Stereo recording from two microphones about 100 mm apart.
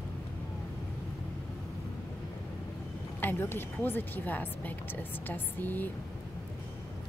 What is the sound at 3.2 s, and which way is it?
Speech, 20° left (ahead or behind).